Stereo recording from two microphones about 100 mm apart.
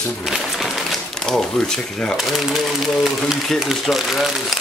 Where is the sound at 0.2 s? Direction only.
5° right (ahead or behind).